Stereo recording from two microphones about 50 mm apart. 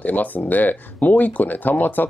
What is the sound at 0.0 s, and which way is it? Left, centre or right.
Speech, left.